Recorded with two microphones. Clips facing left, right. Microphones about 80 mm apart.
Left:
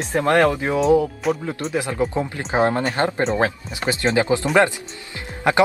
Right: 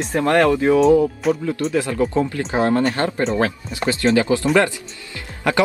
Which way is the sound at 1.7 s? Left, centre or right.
Centre.